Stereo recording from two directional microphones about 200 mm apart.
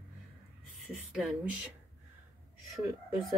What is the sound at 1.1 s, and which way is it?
Speech, centre (ahead or behind).